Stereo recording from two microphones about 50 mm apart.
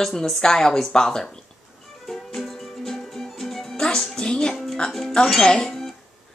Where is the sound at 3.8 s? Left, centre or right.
Centre.